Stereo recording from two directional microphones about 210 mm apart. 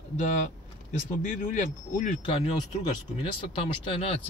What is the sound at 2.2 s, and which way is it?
Speech, 25° left (ahead or behind).